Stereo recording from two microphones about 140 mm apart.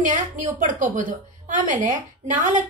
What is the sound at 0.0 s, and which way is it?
A woman's voice, 70° right (ahead or behind).